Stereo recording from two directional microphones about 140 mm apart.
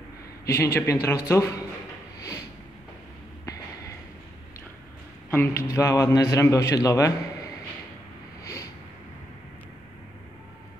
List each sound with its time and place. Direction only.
0.5 s a man's voice: 15° left (ahead or behind)
3.4 s a sound: 25° left (ahead or behind)
5.3 s a man's voice: 20° left (ahead or behind)